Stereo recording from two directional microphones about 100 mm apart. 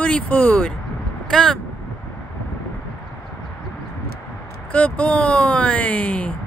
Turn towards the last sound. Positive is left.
turn(degrees=10)  # may be behind; listen again after turning